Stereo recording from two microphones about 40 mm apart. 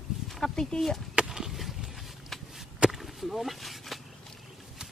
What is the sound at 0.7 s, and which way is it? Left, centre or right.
Speech, centre.